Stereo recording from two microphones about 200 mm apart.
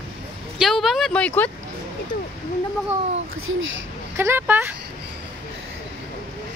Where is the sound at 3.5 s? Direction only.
70° right (ahead or behind).